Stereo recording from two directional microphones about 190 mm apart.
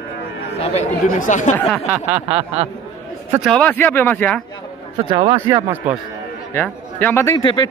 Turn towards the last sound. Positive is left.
turn(degrees=25)  # may be behind; listen again after turning